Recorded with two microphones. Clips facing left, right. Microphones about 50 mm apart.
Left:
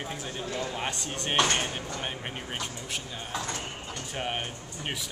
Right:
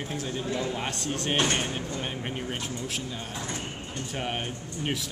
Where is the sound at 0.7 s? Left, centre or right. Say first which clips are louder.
Right 2 dB; centre.